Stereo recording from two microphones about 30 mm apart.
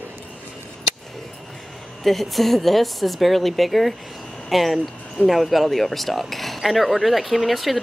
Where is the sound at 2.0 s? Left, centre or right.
Centre.